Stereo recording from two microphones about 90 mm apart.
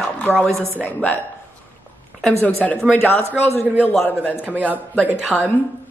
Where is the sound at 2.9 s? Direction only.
25° left (ahead or behind).